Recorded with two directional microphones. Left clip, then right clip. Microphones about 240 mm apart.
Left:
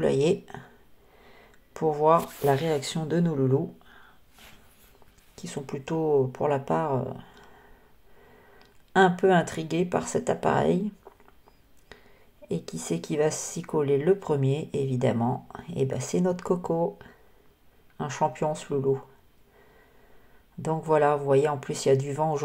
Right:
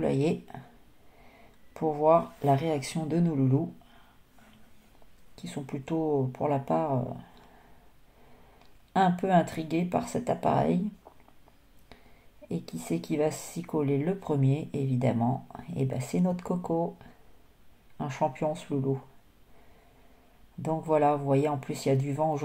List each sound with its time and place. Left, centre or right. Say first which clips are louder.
0.0 s speech: left 5 dB; centre
1.7 s speech: left 2 dB; centre
5.3 s speech: left 3 dB; centre
8.5 s speech: left 5 dB; centre
11.1 s rodents: left 3 dB; left
12.4 s speech: left 3 dB; centre
20.6 s speech: left 2 dB; centre